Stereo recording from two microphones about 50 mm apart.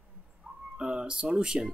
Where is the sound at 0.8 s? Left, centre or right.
Centre.